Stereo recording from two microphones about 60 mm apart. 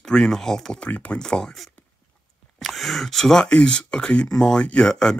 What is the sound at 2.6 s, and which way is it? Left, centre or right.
Speech, centre.